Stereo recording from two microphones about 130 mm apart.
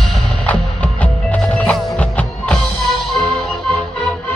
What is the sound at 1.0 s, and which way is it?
Music, 10° left (ahead or behind).